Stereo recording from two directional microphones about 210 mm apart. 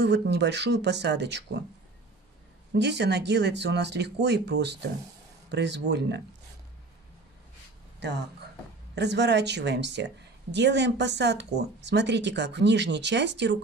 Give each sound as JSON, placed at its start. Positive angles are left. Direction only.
{"t": 0.0, "sound": "speech", "side_deg": -55}
{"t": 2.7, "sound": "speech", "side_deg": -55}
{"t": 8.9, "sound": "a woman's voice", "side_deg": -55}